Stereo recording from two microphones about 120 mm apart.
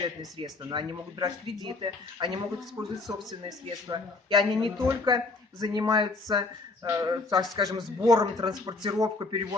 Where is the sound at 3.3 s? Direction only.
35° right (ahead or behind).